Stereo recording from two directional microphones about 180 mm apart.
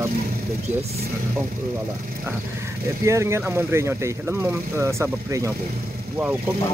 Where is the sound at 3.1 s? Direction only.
15° right (ahead or behind).